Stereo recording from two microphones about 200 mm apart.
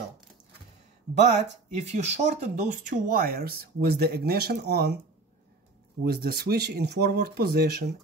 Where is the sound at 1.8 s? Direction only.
35° right (ahead or behind); by 5.0 s 55° right (ahead or behind).